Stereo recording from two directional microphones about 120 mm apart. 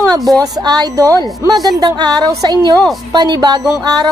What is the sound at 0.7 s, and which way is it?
Speech, 30° right (ahead or behind).